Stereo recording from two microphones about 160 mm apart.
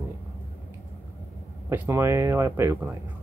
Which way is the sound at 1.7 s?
15° right (ahead or behind).